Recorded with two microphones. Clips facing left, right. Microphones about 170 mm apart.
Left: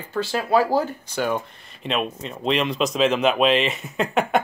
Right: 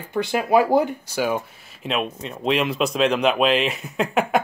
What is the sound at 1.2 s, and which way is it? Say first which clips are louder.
Speech: right 1 dB; 5° right (ahead or behind).